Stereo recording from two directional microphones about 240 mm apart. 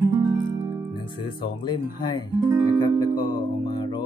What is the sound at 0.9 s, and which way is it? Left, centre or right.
Music, centre.